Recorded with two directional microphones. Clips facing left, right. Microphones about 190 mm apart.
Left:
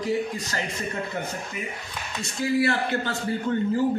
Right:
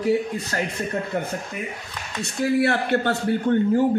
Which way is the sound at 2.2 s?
60° right (ahead or behind).